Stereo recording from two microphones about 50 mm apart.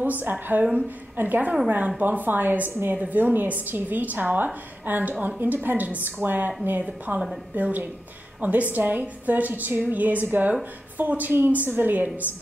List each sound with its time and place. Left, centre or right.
0.0 s a woman's voice: right